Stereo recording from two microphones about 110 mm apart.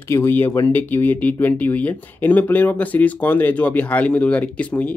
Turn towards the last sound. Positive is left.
turn(degrees=10)  # may be behind; listen again after turning